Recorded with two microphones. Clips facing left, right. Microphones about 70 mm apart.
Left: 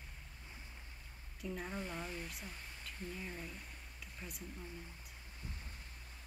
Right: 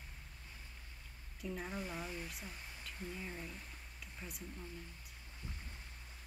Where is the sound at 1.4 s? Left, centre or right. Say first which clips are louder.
Even; centre.